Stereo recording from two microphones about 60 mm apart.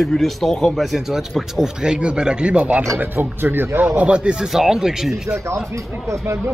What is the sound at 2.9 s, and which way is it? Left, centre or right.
Speech, right.